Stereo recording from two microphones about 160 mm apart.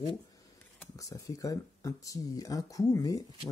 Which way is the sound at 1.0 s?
20° left (ahead or behind).